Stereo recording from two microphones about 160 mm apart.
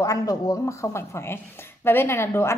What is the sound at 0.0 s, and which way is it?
A woman's voice, 20° left (ahead or behind).